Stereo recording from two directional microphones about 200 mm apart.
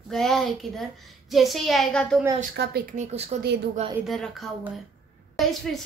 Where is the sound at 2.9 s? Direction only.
35° right (ahead or behind).